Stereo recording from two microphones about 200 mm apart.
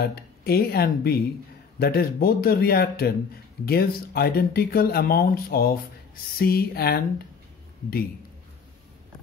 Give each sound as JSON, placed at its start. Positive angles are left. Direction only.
{"t": 0.0, "sound": "speech", "side_deg": 50}